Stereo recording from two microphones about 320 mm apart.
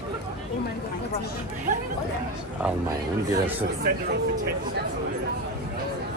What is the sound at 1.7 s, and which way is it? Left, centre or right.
Speech, right.